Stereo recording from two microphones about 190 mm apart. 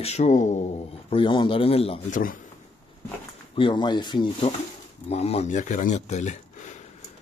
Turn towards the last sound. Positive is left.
turn(degrees=40)  # may be behind; listen again after turning